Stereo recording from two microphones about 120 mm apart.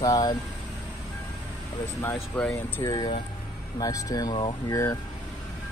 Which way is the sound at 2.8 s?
35° left (ahead or behind).